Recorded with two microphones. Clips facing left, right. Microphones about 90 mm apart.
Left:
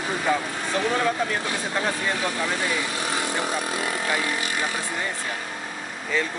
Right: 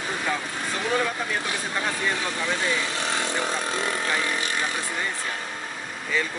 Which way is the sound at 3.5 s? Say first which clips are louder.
Even; 15° left (ahead or behind).